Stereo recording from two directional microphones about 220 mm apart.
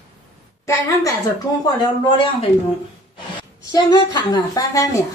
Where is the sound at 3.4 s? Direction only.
20° left (ahead or behind).